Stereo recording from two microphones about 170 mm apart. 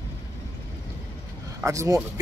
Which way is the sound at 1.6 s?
20° right (ahead or behind).